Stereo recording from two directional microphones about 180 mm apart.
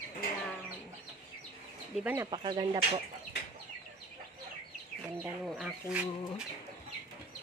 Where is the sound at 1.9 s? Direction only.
10° right (ahead or behind).